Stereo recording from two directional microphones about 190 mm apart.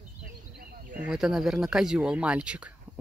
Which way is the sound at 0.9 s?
5° right (ahead or behind).